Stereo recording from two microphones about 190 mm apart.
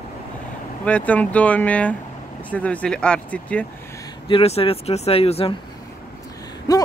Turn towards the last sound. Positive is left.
turn(degrees=20)  # may be behind; listen again after turning